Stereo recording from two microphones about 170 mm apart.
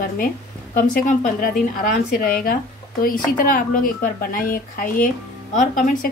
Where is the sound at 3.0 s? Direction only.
55° left (ahead or behind).